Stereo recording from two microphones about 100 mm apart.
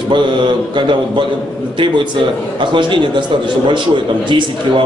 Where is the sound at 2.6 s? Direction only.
55° right (ahead or behind).